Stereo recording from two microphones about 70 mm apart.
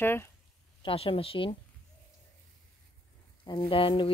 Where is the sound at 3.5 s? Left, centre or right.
Left.